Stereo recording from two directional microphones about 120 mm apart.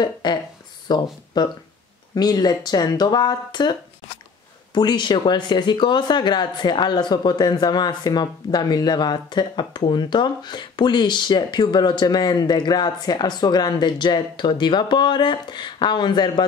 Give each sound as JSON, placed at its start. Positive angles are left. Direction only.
{"t": 0.0, "sound": "speech", "side_deg": 40}
{"t": 4.7, "sound": "speech", "side_deg": 40}